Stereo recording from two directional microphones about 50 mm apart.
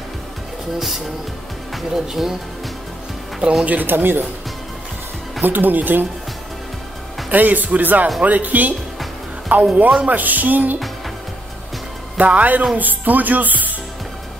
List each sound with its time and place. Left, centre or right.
0.7 s speech: centre
3.6 s speech: right
5.4 s speech: right
7.2 s speech: right
12.2 s speech: right